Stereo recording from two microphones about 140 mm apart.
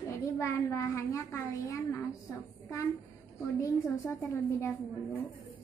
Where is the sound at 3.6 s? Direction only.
20° left (ahead or behind).